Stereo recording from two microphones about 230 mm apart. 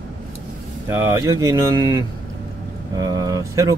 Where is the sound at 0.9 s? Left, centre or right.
Centre.